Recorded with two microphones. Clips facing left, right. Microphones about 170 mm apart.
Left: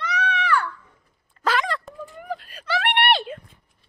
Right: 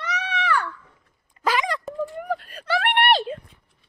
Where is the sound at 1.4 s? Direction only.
10° right (ahead or behind).